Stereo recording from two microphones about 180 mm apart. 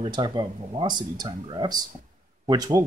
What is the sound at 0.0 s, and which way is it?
Speech, 25° right (ahead or behind).